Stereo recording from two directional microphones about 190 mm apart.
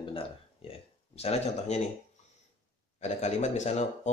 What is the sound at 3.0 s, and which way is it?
Speech, 35° left (ahead or behind).